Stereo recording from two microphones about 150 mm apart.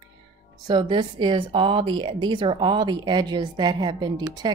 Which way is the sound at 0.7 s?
30° right (ahead or behind).